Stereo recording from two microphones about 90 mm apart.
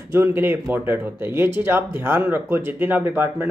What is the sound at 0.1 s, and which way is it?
Speech, 25° right (ahead or behind).